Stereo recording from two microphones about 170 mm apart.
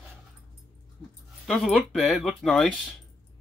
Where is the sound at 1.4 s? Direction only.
Centre (ahead or behind).